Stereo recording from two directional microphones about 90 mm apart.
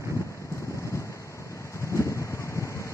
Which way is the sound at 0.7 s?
35° left (ahead or behind).